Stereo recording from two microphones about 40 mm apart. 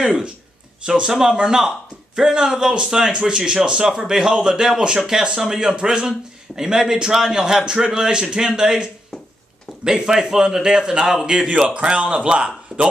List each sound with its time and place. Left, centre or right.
0.0 s a man's voice: centre